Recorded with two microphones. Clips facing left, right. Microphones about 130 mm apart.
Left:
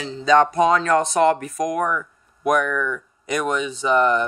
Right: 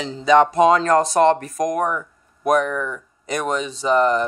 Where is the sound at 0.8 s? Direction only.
40° right (ahead or behind).